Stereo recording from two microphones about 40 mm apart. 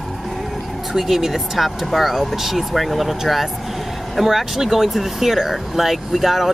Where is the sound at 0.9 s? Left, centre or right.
Centre.